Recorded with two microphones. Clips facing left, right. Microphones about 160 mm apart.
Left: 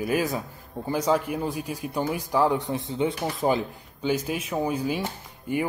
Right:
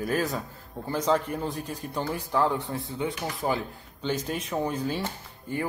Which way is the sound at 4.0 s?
10° left (ahead or behind).